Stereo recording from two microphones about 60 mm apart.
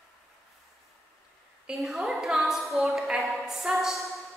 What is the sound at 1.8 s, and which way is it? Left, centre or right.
A woman's voice, centre.